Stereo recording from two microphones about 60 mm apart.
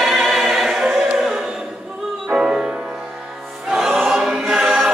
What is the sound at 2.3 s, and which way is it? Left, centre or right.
Music, centre.